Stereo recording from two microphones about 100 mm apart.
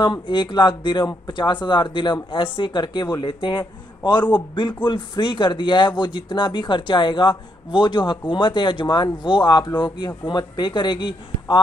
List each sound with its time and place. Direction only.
0.0 s speech: 55° left (ahead or behind)